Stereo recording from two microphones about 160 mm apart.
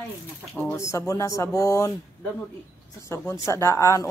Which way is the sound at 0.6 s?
15° left (ahead or behind).